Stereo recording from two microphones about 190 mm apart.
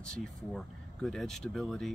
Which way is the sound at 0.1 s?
Centre (ahead or behind).